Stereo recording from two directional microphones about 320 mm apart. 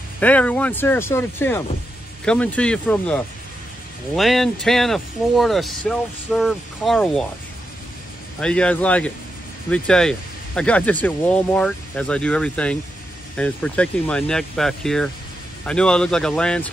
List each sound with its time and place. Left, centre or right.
0.2 s speech: centre
8.4 s speech: centre